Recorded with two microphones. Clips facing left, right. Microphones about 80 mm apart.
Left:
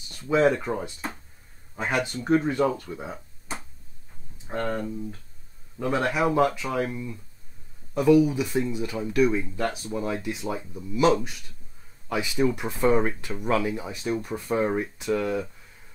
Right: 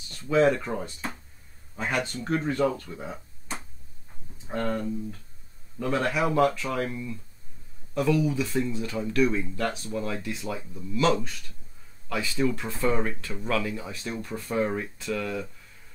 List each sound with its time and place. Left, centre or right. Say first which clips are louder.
0.2 s speech: left 1 dB; centre
2.7 s a sound: left 2 dB; centre
5.8 s speech: left 1 dB; centre
6.9 s speech: left 1 dB; left
7.9 s speech: left 6 dB; centre